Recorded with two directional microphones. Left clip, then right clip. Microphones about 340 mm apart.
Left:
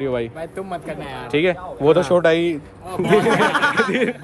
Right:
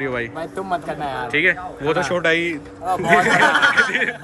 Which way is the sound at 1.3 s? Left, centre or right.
Centre.